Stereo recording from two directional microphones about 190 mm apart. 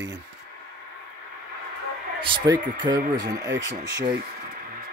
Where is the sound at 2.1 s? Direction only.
25° right (ahead or behind).